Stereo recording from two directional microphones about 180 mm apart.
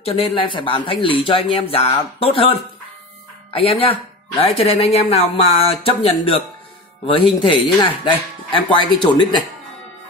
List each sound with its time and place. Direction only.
0.0 s speech: 35° left (ahead or behind)
3.5 s speech: 30° left (ahead or behind)